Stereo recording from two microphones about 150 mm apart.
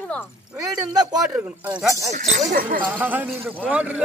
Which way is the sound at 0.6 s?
25° right (ahead or behind).